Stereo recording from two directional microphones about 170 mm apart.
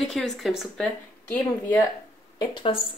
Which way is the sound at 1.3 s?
10° left (ahead or behind).